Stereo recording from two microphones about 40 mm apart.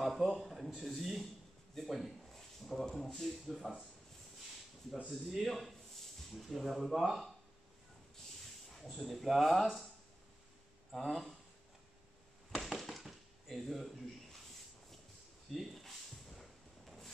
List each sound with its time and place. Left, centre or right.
0.0 s a man's voice: centre
3.4 s speech: centre
5.3 s speech: centre
9.0 s speech: centre
10.9 s speech: centre
12.5 s chop: centre
15.5 s a sound: centre